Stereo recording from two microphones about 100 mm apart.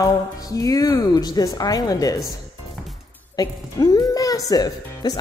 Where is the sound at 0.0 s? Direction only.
35° left (ahead or behind).